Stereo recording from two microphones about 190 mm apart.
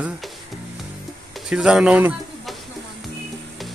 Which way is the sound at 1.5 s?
5° right (ahead or behind).